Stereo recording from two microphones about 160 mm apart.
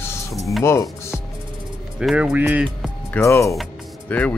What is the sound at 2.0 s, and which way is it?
Speech, 10° right (ahead or behind).